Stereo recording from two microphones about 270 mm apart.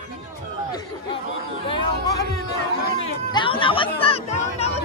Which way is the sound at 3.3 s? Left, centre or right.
Centre.